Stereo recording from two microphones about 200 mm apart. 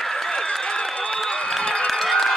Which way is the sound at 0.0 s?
5° left (ahead or behind).